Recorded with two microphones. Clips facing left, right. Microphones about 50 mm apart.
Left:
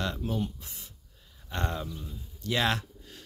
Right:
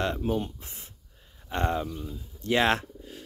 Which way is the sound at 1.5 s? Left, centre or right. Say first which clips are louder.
Right 5 dB; right.